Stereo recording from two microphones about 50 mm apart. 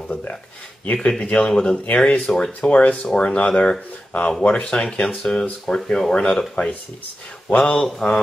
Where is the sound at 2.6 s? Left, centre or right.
Left.